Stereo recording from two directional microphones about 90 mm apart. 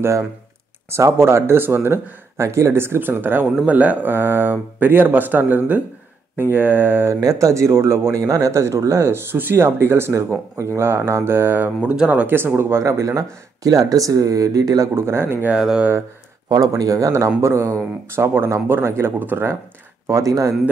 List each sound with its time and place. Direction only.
0.8 s speech: 30° right (ahead or behind)
7.2 s speech: 40° right (ahead or behind)
15.0 s speech: 30° right (ahead or behind)
15.5 s speech: 10° right (ahead or behind)
16.4 s speech: 40° right (ahead or behind); by 19.5 s 20° right (ahead or behind)
20.1 s speech: 35° right (ahead or behind)